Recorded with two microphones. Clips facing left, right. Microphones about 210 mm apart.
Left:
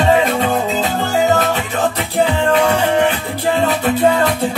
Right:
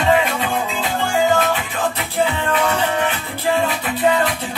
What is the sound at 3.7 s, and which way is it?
Music, 45° left (ahead or behind).